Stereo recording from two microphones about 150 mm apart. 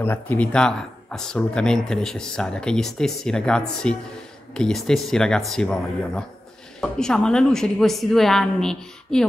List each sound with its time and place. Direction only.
0.0 s speech: 15° left (ahead or behind)